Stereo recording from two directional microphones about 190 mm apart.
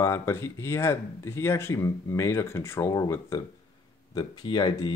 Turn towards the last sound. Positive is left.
turn(degrees=20)  # may be behind; listen again after turning